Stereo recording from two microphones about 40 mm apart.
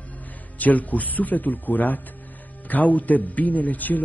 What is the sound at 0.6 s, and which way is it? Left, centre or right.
A man's voice, left.